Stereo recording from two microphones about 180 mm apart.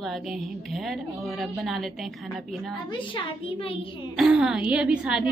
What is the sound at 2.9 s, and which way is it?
Speech, 30° left (ahead or behind).